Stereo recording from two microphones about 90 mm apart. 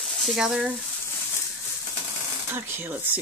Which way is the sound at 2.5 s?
25° right (ahead or behind).